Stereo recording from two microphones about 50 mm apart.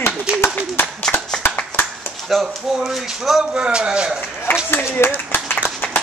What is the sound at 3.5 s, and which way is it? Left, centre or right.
Speech, centre.